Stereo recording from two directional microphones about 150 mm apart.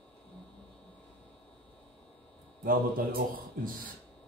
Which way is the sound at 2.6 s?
75° right (ahead or behind).